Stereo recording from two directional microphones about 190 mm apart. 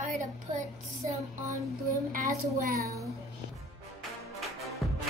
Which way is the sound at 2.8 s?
15° right (ahead or behind).